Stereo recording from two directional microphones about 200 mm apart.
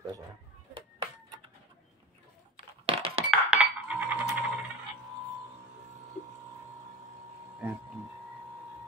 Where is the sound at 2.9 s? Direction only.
30° right (ahead or behind).